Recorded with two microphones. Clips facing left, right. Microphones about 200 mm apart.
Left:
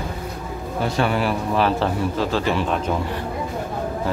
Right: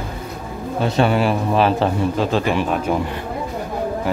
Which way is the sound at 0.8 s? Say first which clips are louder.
Right 4 dB; 20° right (ahead or behind).